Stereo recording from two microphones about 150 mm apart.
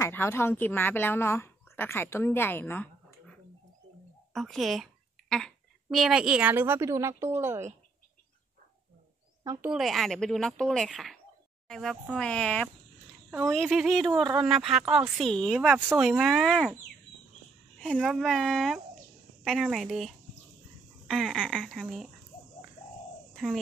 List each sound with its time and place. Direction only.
0.0 s a woman's voice: 15° left (ahead or behind)
4.3 s a child's voice: centre (ahead or behind); by 7.7 s 15° right (ahead or behind)
9.4 s speech: 25° right (ahead or behind)
9.7 s a child's voice: centre (ahead or behind)
17.7 s a child's voice: 5° left (ahead or behind)
23.3 s cricket: centre (ahead or behind)